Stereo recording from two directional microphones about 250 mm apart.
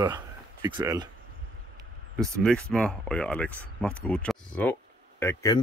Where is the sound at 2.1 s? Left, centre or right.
Centre.